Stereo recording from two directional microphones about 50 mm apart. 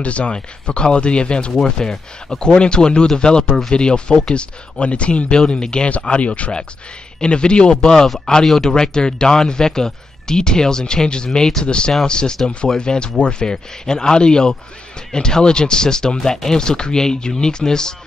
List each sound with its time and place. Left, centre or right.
0.0 s speech: left